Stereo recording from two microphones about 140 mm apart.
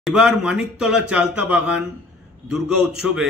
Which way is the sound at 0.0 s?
5° right (ahead or behind).